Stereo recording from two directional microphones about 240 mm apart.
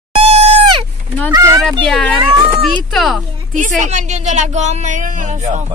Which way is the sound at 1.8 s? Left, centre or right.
Centre.